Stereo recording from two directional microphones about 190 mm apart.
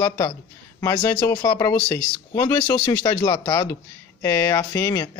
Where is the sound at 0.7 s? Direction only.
15° left (ahead or behind).